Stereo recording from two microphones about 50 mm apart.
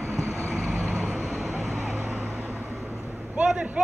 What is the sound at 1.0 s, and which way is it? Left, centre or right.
Vehicle, right.